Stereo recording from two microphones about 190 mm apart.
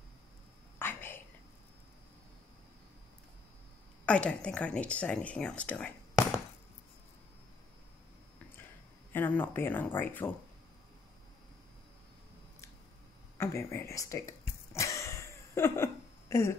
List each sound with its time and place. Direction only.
0.7 s whispering: 10° left (ahead or behind)
4.0 s speech: 5° left (ahead or behind)
9.1 s speech: 10° left (ahead or behind)
13.4 s speech: 15° left (ahead or behind)
14.7 s a sound: 15° left (ahead or behind)